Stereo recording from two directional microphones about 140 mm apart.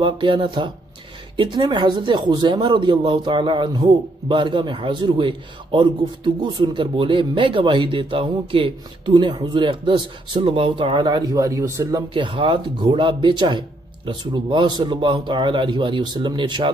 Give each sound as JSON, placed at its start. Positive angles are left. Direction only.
{"t": 0.0, "sound": "speech", "side_deg": -35}
{"t": 12.1, "sound": "speech", "side_deg": -35}